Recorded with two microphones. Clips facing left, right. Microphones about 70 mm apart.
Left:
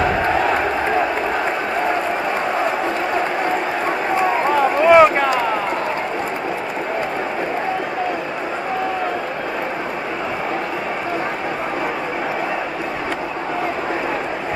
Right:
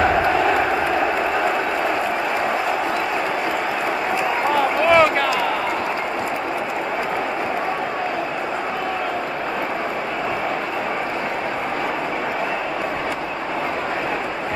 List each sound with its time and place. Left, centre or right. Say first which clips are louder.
4.8 s run: left 5 dB; centre